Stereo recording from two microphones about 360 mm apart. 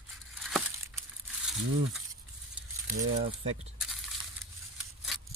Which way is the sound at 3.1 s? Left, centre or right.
Centre.